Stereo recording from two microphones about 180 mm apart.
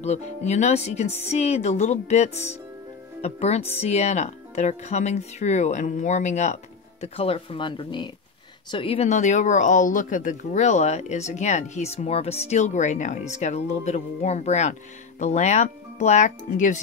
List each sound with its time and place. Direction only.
0.0 s speech: 40° left (ahead or behind)